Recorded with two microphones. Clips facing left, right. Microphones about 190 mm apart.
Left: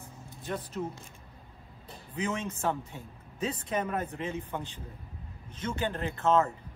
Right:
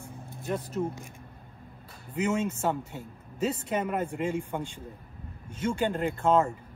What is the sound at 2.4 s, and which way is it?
Speech, 5° right (ahead or behind).